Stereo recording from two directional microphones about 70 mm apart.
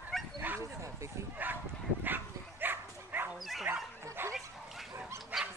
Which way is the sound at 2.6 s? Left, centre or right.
Right.